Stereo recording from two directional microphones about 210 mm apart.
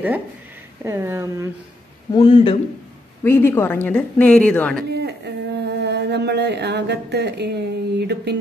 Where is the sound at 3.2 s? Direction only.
10° left (ahead or behind).